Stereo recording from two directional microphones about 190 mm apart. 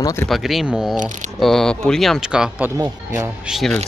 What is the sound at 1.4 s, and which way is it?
Speech, centre (ahead or behind).